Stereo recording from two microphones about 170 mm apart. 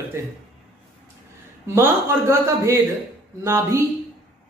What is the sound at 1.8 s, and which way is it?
Speech, 15° right (ahead or behind).